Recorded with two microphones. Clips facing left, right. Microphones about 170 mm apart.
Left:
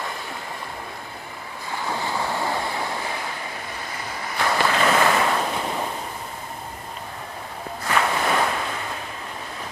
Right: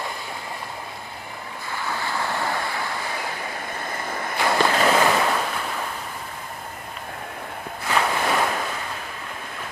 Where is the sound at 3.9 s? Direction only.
50° right (ahead or behind).